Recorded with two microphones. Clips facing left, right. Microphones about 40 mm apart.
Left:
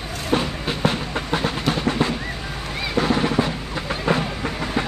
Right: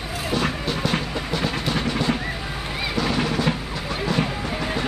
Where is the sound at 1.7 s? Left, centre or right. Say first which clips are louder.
Left 2 dB; left.